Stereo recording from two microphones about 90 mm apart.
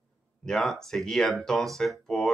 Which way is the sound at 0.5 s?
5° left (ahead or behind).